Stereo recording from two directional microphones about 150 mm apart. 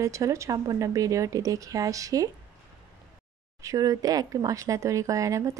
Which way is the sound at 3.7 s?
25° right (ahead or behind).